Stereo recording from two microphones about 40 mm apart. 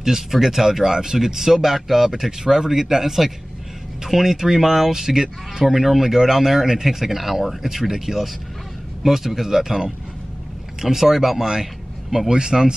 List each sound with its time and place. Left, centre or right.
0.0 s speech: centre